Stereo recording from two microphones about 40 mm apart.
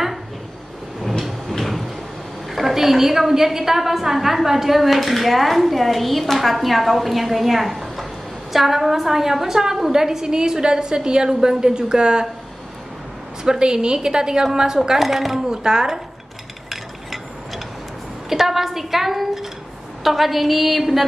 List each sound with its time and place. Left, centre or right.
1.5 s cupboard open or close: centre
2.5 s a woman's voice: centre
13.4 s a woman's voice: centre
15.0 s a woman's voice: centre
15.4 s a woman's voice: centre
18.3 s a woman's voice: centre